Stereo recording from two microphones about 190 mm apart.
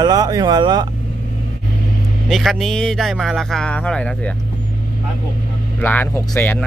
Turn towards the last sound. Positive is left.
turn(degrees=10)  # may be behind; listen again after turning